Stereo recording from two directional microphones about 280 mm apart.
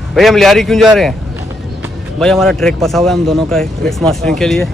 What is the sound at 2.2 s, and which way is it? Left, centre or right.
Speech, centre.